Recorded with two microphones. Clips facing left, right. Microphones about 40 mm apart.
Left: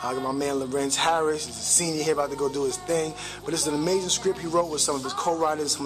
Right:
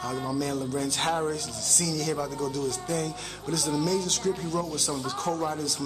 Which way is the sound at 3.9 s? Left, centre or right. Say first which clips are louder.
Left 3 dB; left.